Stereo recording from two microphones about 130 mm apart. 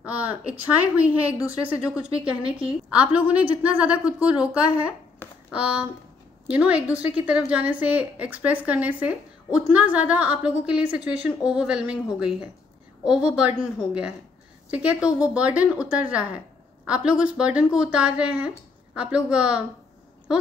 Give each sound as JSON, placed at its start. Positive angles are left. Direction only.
{"t": 0.0, "sound": "a woman's voice", "side_deg": -10}